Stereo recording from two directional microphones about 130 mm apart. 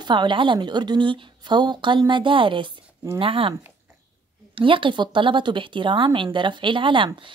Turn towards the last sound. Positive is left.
turn(degrees=-40)  # may be behind; listen again after turning